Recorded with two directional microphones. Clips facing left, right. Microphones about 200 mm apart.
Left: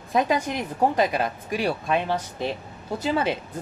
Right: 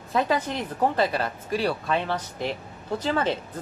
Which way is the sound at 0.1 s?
15° left (ahead or behind).